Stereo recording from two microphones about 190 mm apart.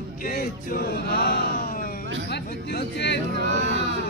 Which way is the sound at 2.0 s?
65° right (ahead or behind).